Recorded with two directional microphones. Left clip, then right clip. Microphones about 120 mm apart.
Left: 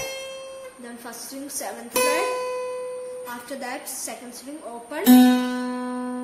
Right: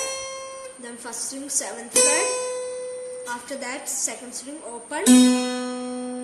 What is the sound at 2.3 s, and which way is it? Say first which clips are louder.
Music: even; 35° left (ahead or behind).